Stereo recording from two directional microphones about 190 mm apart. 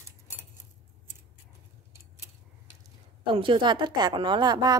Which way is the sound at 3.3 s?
25° right (ahead or behind).